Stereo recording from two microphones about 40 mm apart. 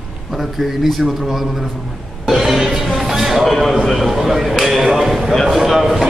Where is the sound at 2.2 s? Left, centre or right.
Centre.